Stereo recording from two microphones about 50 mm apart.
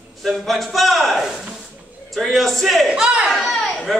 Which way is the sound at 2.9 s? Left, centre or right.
Right.